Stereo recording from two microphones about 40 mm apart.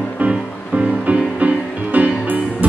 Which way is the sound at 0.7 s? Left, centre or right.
Right.